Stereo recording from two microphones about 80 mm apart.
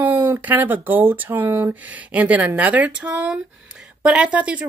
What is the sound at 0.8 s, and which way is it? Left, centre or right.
Speech, right.